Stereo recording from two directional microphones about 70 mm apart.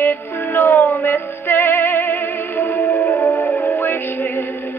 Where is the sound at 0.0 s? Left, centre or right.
Left.